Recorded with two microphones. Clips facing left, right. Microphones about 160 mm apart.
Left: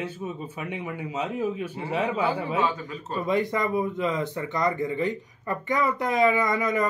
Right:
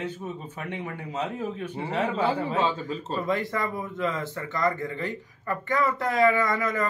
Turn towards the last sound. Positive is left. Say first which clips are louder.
# left 2 dB
turn(degrees=15)  # may be behind; listen again after turning